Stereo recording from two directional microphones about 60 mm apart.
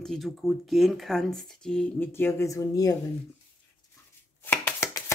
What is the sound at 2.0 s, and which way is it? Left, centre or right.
Speech, left.